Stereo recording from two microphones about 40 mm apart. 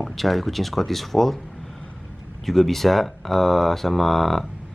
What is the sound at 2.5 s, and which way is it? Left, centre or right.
Speech, centre.